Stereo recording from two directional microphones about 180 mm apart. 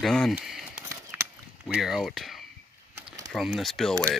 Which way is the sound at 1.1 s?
10° right (ahead or behind).